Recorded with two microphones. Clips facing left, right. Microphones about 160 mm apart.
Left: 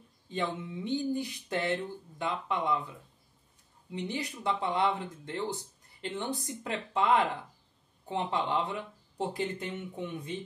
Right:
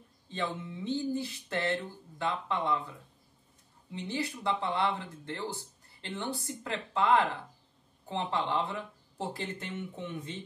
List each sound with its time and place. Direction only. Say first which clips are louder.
0.3 s speech: left 2 dB; 15° left (ahead or behind)
3.9 s speech: even; 15° left (ahead or behind)